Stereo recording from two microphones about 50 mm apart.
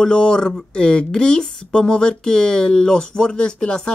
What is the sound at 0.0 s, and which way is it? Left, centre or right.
Speech, centre.